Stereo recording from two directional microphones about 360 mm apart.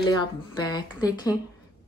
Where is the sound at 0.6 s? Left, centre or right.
Centre.